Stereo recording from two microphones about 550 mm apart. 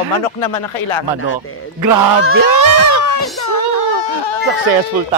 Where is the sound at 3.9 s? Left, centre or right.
Left.